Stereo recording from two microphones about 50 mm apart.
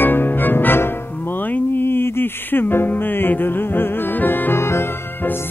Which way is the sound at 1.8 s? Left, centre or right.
Left.